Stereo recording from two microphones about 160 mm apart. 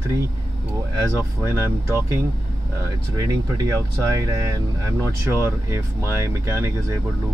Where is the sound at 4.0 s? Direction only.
20° right (ahead or behind).